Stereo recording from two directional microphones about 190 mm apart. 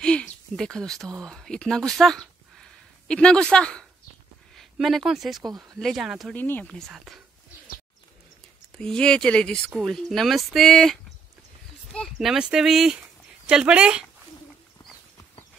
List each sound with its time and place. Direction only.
0.0 s a sound: 5° left (ahead or behind)
1.2 s speech: centre (ahead or behind)
5.5 s speech: 20° right (ahead or behind)
5.8 s speech: centre (ahead or behind)
8.7 s speech: 5° left (ahead or behind)